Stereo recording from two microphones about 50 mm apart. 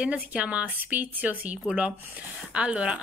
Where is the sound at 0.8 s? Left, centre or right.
Right.